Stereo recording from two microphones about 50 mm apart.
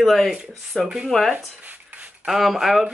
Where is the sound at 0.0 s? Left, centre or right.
Centre.